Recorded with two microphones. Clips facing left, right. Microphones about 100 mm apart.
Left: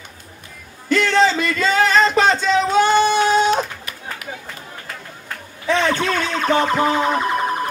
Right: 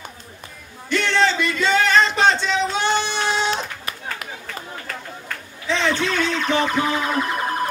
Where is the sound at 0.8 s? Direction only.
40° left (ahead or behind).